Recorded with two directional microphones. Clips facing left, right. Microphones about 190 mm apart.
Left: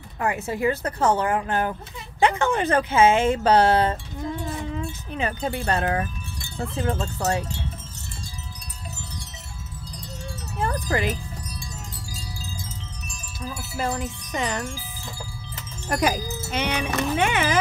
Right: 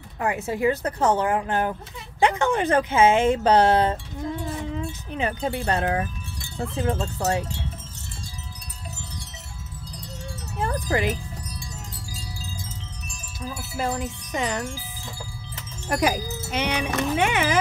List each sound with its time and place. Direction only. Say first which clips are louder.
0.2 s speech: right 1 dB; 20° right (ahead or behind)
4.7 s wind chime: even; 20° right (ahead or behind)
6.8 s speech: right 1 dB; 20° right (ahead or behind)
10.6 s wind chime: even; 15° right (ahead or behind)
13.7 s speech: even; 15° right (ahead or behind)
15.9 s speech: even; 10° right (ahead or behind)